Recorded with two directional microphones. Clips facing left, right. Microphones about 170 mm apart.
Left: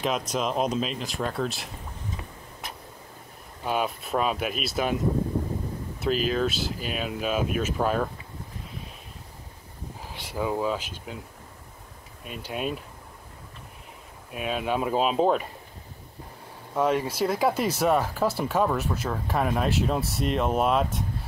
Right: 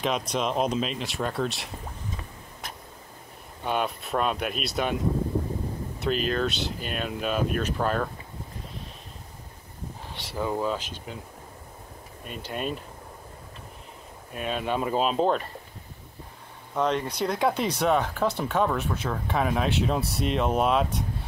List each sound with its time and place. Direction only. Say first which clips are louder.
0.0 s speech: even; centre (ahead or behind)
3.6 s speech: even; centre (ahead or behind)
5.9 s speech: left 1 dB; centre (ahead or behind)
10.1 s speech: left 1 dB; 5° left (ahead or behind)
12.3 s speech: left 1 dB; 5° left (ahead or behind)
14.3 s speech: left 1 dB; 5° left (ahead or behind)
16.7 s speech: left 2 dB; 10° left (ahead or behind)